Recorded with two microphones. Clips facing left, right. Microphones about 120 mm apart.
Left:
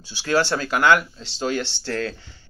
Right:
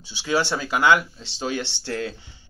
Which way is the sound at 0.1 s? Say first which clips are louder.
Left 2 dB; 20° right (ahead or behind).